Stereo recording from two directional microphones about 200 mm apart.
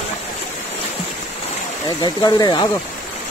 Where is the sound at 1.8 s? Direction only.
20° left (ahead or behind).